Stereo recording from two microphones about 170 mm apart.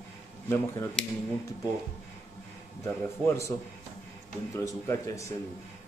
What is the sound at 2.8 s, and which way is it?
Speech, 15° left (ahead or behind).